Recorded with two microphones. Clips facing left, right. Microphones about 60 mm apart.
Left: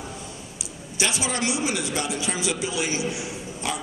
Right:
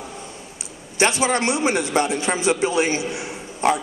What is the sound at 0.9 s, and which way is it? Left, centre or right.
A man's voice, right.